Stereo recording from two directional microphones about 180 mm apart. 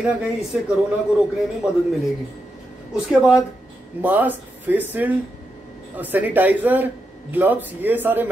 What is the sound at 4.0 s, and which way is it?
Speech, 10° right (ahead or behind).